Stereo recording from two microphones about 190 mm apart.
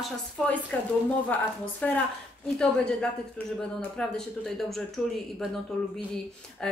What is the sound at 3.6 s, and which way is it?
Speech, 5° left (ahead or behind).